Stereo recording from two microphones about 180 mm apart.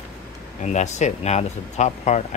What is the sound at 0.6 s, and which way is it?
Speech, 40° left (ahead or behind).